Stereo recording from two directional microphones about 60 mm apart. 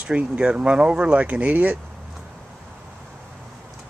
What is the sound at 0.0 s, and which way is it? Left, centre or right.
Speech, centre.